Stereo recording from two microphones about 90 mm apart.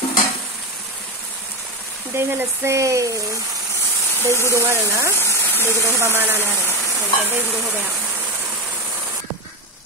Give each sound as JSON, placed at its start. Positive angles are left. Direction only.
{"t": 2.1, "sound": "speech", "side_deg": -30}
{"t": 4.2, "sound": "speech", "side_deg": -30}
{"t": 5.1, "sound": "a sound", "side_deg": 30}
{"t": 5.8, "sound": "speech", "side_deg": -35}